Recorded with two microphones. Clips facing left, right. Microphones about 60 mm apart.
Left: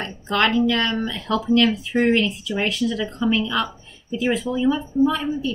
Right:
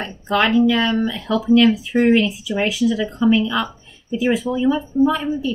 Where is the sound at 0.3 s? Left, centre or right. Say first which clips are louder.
Right 3 dB; centre.